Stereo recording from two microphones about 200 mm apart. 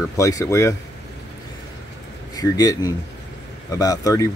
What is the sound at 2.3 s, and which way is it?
Speech, 20° left (ahead or behind).